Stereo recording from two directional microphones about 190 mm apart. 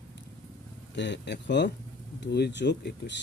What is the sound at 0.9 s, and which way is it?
Speech, 65° left (ahead or behind).